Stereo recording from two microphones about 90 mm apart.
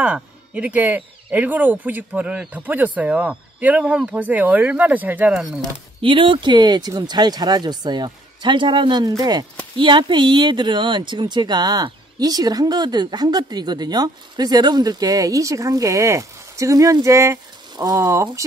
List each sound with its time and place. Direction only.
0.0 s speech: 15° right (ahead or behind)
5.3 s speech: 5° right (ahead or behind)
6.0 s speech: 70° right (ahead or behind)
9.2 s speech: 50° right (ahead or behind)
9.8 s speech: 65° right (ahead or behind); by 18.4 s 35° right (ahead or behind)